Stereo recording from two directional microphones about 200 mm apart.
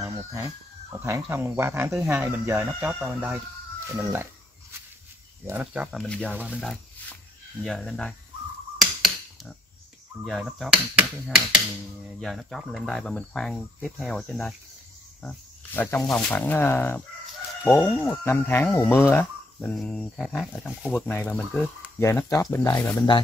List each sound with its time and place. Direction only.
0.0 s speech: 15° right (ahead or behind)
5.5 s speech: 5° right (ahead or behind)
8.7 s finger snapping: centre (ahead or behind)
10.2 s speech: centre (ahead or behind)
22.0 s speech: 15° left (ahead or behind)